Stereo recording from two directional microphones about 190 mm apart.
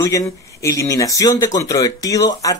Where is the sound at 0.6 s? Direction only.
15° left (ahead or behind).